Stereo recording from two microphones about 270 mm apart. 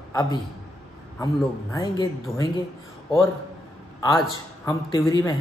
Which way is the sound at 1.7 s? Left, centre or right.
Centre.